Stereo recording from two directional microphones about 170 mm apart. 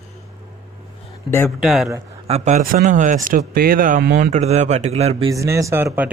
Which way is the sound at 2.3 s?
45° right (ahead or behind).